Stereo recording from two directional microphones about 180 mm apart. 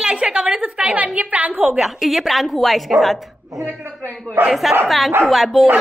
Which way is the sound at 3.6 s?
10° right (ahead or behind).